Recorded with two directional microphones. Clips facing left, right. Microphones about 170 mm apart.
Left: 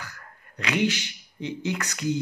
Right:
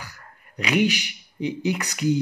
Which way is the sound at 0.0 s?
15° right (ahead or behind).